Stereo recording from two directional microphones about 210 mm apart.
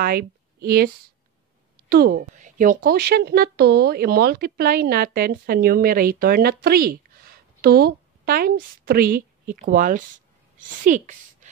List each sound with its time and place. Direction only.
0.0 s a woman's voice: 45° right (ahead or behind)